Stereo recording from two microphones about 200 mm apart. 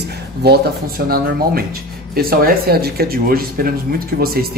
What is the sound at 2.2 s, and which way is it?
Speech, 45° right (ahead or behind).